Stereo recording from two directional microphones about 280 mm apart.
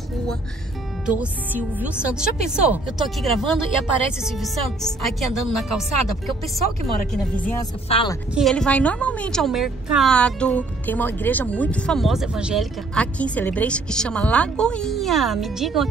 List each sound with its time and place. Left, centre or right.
1.0 s a woman's voice: centre
7.9 s speech: centre
8.4 s a woman's voice: centre